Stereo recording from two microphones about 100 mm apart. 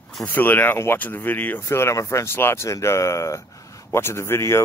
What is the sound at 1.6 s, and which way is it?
Speech, 30° left (ahead or behind).